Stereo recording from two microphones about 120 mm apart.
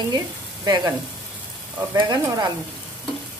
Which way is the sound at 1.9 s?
35° right (ahead or behind).